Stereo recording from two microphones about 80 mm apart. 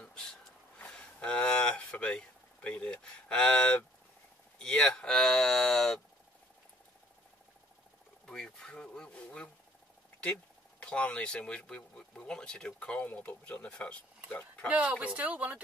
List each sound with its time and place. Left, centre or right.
0.0 s a sound: centre
4.6 s speech: centre
8.3 s speech: centre
10.8 s speech: centre
14.7 s speech: centre